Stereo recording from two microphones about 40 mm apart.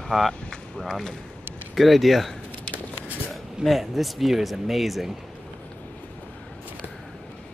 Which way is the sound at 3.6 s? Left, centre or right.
Centre.